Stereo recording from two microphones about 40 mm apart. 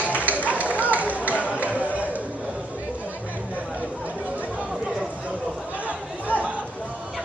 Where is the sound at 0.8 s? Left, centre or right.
Right.